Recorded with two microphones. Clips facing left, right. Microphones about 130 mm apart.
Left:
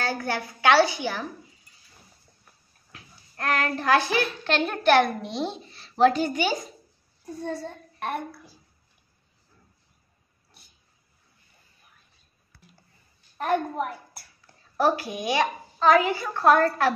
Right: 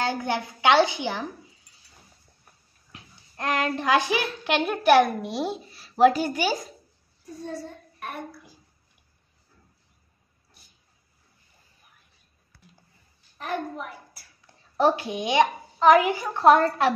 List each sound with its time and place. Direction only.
0.0 s a child's voice: 20° right (ahead or behind)
2.9 s a child's voice: 20° right (ahead or behind)
7.6 s a child's voice: 70° left (ahead or behind)
13.4 s a child's voice: 55° left (ahead or behind)
14.4 s a woman's voice: 20° right (ahead or behind)